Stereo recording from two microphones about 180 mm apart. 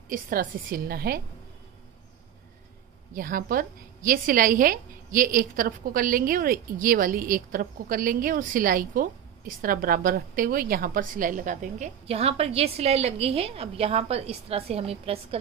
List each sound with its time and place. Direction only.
0.1 s a woman's voice: 50° right (ahead or behind)
3.2 s a woman's voice: 50° right (ahead or behind); by 15.1 s 35° right (ahead or behind)